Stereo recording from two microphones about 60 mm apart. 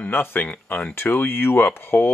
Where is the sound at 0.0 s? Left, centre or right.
Left.